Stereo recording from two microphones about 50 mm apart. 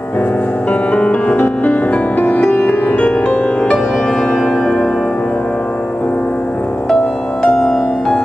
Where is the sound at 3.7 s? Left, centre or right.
Centre.